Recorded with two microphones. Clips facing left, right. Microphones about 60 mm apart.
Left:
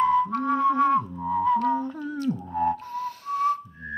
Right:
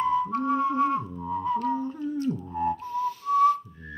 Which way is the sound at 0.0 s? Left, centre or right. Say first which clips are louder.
Left 3 dB; left.